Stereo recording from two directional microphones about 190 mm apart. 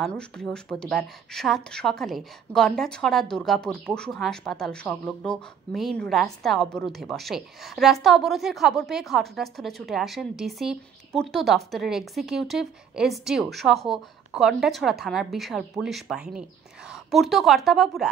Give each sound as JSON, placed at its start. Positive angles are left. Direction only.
{"t": 0.0, "sound": "speech", "side_deg": 5}